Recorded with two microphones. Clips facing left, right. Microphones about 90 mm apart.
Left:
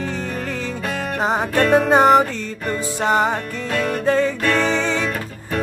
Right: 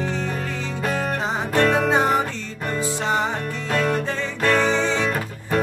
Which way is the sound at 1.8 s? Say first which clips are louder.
Left 6 dB; 60° left (ahead or behind).